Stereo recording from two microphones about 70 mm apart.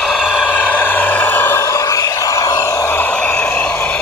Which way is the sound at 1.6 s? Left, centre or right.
Left.